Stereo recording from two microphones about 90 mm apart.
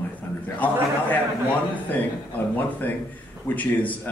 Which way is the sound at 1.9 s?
20° left (ahead or behind).